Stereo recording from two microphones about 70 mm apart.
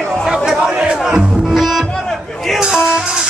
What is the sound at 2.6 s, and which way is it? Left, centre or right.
Music, centre.